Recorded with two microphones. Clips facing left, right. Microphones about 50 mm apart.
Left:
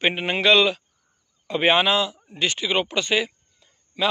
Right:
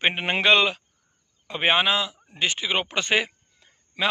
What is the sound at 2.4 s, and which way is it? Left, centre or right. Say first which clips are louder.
Speech: left 2 dB; centre.